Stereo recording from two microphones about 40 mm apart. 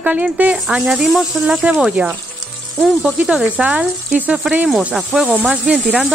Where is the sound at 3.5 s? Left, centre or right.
Right.